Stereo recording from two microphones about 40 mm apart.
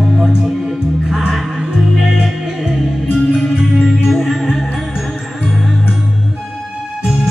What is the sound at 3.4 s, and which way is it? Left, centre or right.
Music, centre.